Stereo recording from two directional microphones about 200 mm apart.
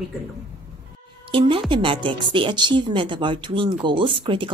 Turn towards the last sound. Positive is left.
turn(degrees=-25)  # may be behind; listen again after turning